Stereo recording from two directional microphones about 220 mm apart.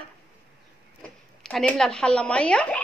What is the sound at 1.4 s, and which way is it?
Speech, centre (ahead or behind).